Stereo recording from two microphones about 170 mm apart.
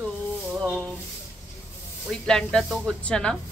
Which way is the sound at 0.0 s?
5° right (ahead or behind).